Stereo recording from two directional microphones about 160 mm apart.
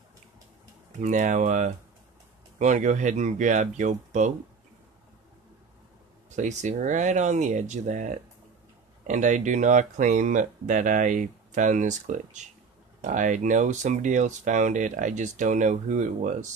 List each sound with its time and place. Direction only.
0.9 s speech: 50° right (ahead or behind)
6.3 s speech: 50° right (ahead or behind)